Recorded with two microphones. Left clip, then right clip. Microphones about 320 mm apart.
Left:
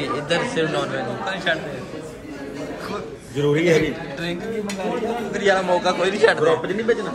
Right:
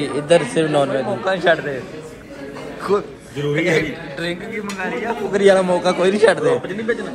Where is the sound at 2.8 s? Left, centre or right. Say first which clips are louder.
Right 10 dB; centre.